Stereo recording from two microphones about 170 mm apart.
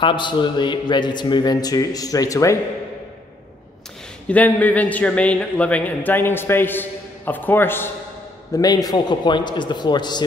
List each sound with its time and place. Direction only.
0.0 s a man's voice: 30° left (ahead or behind)
4.3 s a man's voice: 10° left (ahead or behind); by 10.2 s 25° left (ahead or behind)